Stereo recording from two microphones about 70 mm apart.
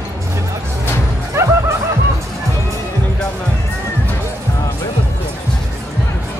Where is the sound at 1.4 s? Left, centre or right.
Right.